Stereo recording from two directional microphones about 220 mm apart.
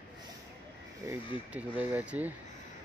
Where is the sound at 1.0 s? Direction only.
15° right (ahead or behind).